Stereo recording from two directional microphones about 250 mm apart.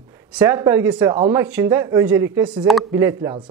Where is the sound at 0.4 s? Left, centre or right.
Centre.